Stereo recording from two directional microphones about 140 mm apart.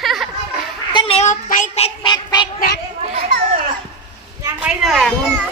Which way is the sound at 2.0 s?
30° left (ahead or behind).